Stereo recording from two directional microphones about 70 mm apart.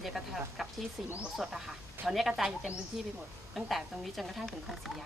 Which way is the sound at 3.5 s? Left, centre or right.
Centre.